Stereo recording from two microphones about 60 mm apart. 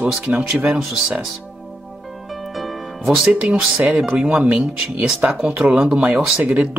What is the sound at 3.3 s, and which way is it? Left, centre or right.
Speech, right.